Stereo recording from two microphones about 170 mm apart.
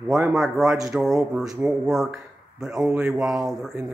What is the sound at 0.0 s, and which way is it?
Speech, 5° right (ahead or behind).